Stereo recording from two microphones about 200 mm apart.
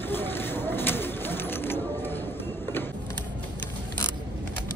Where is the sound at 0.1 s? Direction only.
10° left (ahead or behind).